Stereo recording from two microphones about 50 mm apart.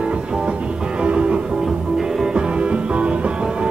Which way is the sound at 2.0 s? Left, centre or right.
Centre.